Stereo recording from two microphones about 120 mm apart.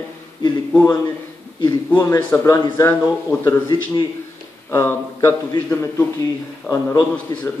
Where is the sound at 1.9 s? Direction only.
15° left (ahead or behind).